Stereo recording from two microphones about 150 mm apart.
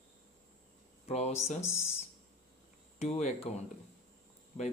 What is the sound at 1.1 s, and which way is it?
Speech, 45° left (ahead or behind).